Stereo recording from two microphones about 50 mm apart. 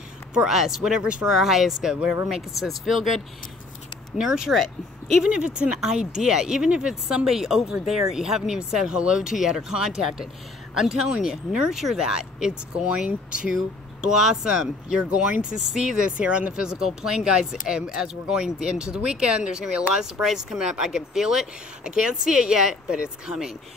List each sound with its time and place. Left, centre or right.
0.3 s speech: centre
1.3 s speech: centre
4.2 s speech: centre
4.6 s speech: centre
5.2 s speech: right
7.2 s speech: centre; by 15.4 s right
15.5 s speech: centre
16.7 s speech: centre